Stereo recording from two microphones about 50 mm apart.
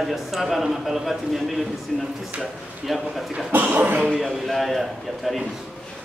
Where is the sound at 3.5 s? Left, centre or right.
Right.